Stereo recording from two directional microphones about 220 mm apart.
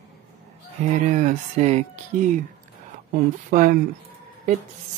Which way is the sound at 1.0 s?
35° right (ahead or behind).